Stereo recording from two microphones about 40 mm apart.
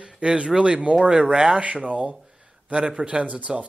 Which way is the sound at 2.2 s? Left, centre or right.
Centre.